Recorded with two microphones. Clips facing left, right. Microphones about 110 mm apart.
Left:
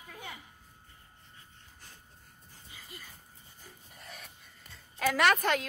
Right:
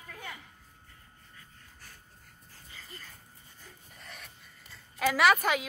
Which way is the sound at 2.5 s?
15° left (ahead or behind).